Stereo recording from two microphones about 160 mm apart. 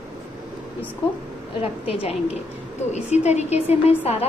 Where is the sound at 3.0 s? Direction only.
45° left (ahead or behind).